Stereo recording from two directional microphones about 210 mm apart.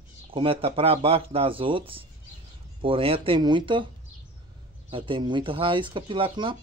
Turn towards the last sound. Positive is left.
turn(degrees=-25)  # may be behind; listen again after turning